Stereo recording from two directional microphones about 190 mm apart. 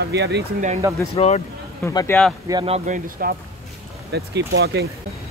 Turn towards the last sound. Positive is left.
turn(degrees=-60)  # may be behind; listen again after turning